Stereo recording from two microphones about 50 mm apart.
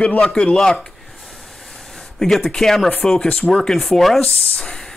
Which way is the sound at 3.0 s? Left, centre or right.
Centre.